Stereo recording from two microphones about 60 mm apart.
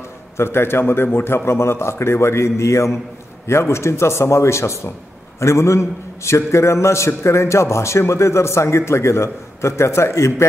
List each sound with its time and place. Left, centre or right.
0.4 s a man's voice: left